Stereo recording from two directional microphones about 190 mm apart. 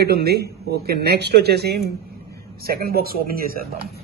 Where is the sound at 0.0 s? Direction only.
60° right (ahead or behind).